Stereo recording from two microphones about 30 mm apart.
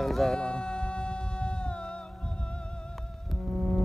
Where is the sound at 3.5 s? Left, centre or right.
Left.